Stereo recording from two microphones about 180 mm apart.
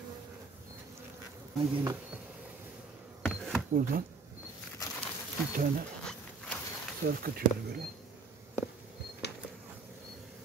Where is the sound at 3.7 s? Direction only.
50° right (ahead or behind).